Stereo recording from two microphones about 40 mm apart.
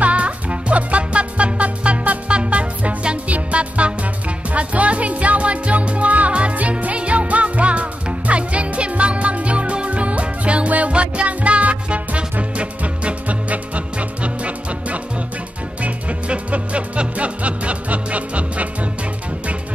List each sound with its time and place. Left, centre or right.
0.0 s music: right